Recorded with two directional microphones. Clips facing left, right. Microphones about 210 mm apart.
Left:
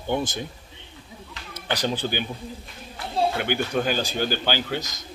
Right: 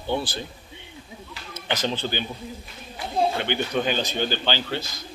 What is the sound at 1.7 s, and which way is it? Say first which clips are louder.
Speech: left 1 dB; 15° left (ahead or behind).